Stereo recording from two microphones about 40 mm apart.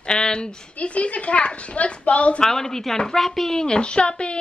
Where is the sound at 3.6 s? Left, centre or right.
Left.